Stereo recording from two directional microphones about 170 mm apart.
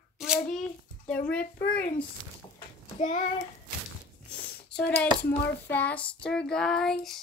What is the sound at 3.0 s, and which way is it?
Speech, 45° left (ahead or behind).